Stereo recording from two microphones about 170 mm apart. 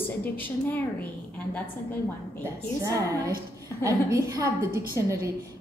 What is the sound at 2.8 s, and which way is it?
A woman's voice, 20° right (ahead or behind).